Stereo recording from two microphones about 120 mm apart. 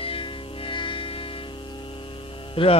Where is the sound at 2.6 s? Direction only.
50° left (ahead or behind).